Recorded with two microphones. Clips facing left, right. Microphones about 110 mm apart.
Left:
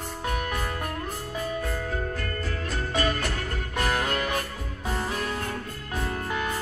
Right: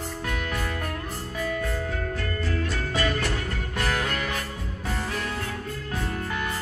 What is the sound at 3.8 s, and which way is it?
Music, 25° left (ahead or behind).